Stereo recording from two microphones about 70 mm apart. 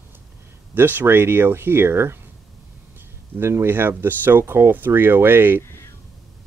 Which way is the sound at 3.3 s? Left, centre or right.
Right.